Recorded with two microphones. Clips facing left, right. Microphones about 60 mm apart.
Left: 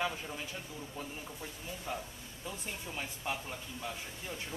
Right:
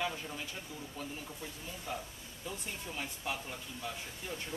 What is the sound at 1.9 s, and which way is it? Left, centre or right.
Speech, centre.